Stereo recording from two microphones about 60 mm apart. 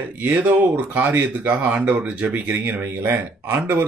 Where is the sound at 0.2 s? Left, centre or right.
Right.